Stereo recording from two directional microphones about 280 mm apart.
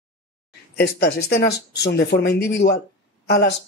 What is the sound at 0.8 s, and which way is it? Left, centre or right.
Speech, left.